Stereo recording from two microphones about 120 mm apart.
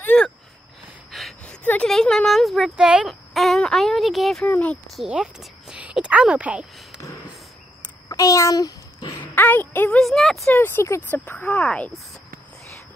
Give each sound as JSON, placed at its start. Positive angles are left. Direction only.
{"t": 0.0, "sound": "a sound", "side_deg": 10}
{"t": 4.5, "sound": "speech", "side_deg": 10}
{"t": 4.9, "sound": "a woman's voice", "side_deg": -5}
{"t": 8.1, "sound": "a sound", "side_deg": 30}
{"t": 9.2, "sound": "speech", "side_deg": 15}
{"t": 9.9, "sound": "speech", "side_deg": 5}
{"t": 10.5, "sound": "speech", "side_deg": 20}